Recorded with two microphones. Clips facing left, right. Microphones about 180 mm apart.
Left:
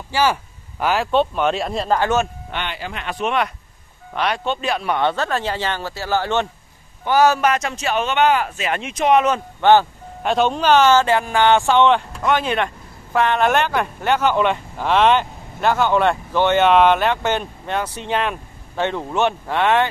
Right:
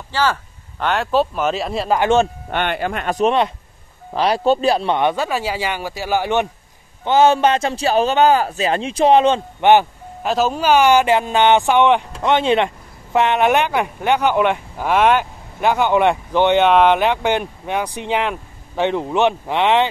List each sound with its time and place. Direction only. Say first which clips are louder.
0.1 s speech: left 1 dB; 10° left (ahead or behind)
2.0 s speech: right 5 dB; 25° right (ahead or behind)
2.5 s speech: right 8 dB; 55° right (ahead or behind); by 4.9 s 35° right (ahead or behind)
4.9 s speech: right 2 dB; 10° right (ahead or behind)
7.1 s speech: right 2 dB; 25° right (ahead or behind)
9.6 s speech: even; 15° right (ahead or behind)
10.2 s speech: even; centre (ahead or behind)